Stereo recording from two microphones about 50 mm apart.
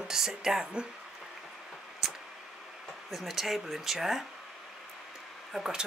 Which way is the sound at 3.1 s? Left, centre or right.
Centre.